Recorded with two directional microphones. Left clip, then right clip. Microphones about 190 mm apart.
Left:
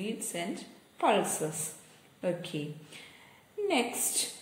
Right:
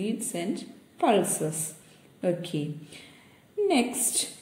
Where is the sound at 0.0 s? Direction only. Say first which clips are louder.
Right 4 dB; 20° right (ahead or behind).